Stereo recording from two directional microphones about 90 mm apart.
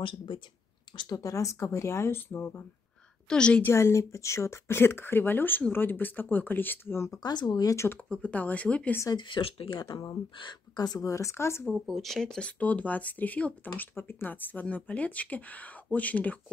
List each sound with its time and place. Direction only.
0.0 s speech: 65° left (ahead or behind)
0.9 s speech: 40° left (ahead or behind); by 2.6 s 25° left (ahead or behind)
3.3 s speech: 10° left (ahead or behind)
3.6 s speech: 30° left (ahead or behind)
7.2 s speech: 50° left (ahead or behind)
7.7 s speech: 30° left (ahead or behind)
8.1 s speech: 15° left (ahead or behind)
9.1 s speech: 65° left (ahead or behind)
10.3 s speech: 55° left (ahead or behind); by 11.6 s 30° left (ahead or behind)
11.8 s speech: centre (ahead or behind); by 16.3 s 15° left (ahead or behind)